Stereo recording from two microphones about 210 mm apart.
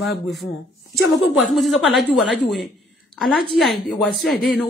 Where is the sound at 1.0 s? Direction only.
55° left (ahead or behind).